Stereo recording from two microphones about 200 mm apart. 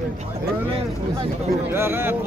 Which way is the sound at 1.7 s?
10° right (ahead or behind).